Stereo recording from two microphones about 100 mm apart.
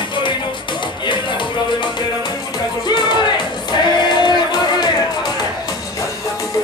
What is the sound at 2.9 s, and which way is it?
Music, 50° left (ahead or behind).